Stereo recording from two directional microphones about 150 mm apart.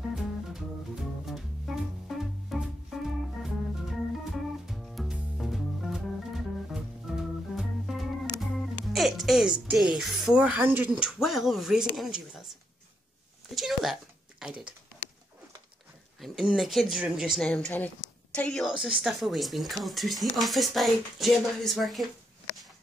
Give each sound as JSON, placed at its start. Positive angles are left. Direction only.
{"t": 0.1, "sound": "music", "side_deg": -5}
{"t": 13.6, "sound": "a sound", "side_deg": 0}
{"t": 14.4, "sound": "typing", "side_deg": -5}
{"t": 16.2, "sound": "speech", "side_deg": 0}